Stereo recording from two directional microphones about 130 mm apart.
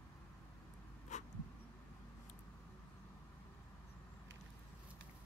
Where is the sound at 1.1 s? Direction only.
65° left (ahead or behind).